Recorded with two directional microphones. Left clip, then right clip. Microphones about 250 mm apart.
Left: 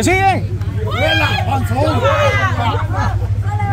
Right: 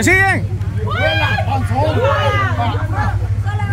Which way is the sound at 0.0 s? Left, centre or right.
Right.